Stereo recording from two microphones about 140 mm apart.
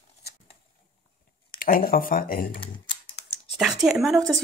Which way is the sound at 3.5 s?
5° right (ahead or behind).